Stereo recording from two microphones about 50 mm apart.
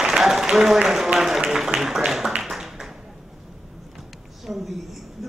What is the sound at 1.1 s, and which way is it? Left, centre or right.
Speech, centre.